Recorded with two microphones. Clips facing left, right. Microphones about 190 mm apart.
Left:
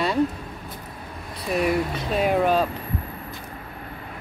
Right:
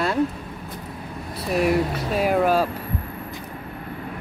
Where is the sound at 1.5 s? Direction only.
5° right (ahead or behind).